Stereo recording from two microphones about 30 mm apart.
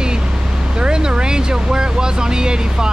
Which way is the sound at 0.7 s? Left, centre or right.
Right.